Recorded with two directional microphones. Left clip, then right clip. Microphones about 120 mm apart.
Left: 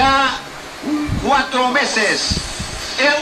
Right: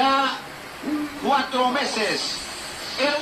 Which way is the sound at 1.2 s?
10° right (ahead or behind).